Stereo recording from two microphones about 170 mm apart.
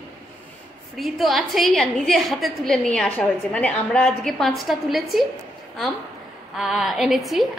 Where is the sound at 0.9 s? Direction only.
Centre (ahead or behind).